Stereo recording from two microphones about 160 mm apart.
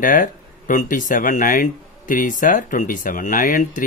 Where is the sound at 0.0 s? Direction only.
55° left (ahead or behind).